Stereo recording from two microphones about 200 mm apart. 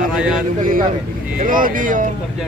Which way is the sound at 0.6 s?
45° right (ahead or behind).